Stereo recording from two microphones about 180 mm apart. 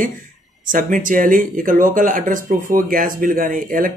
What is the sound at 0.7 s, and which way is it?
Speech, 50° right (ahead or behind).